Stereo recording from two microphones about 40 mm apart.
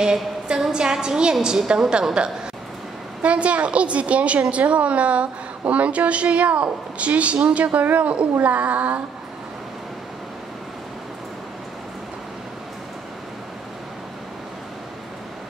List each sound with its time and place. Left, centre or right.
0.0 s a sound: centre
0.7 s a woman's voice: centre
3.2 s a woman's voice: right